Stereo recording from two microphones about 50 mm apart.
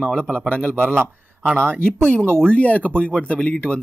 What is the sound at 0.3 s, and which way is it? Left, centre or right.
Speech, left.